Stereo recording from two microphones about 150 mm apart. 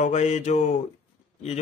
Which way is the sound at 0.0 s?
50° left (ahead or behind).